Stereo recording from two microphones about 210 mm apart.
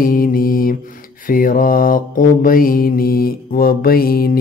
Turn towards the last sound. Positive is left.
turn(degrees=45)  # may be behind; listen again after turning